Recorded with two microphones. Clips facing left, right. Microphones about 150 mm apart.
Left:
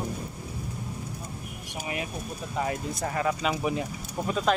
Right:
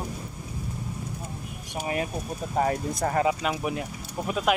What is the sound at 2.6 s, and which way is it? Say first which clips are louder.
Speech: right 5 dB; 45° right (ahead or behind).